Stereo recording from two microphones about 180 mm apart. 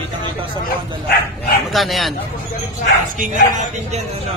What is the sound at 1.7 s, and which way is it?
Speech, centre (ahead or behind).